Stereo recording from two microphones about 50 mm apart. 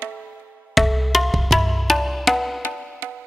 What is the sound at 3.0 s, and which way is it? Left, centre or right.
Music, right.